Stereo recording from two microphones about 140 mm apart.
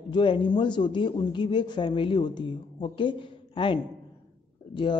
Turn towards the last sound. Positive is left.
turn(degrees=35)  # may be behind; listen again after turning